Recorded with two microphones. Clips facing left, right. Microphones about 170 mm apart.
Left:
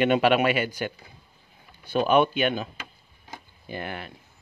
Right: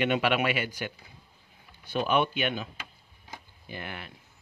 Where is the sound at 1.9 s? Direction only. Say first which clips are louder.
Left 6 dB; 45° left (ahead or behind).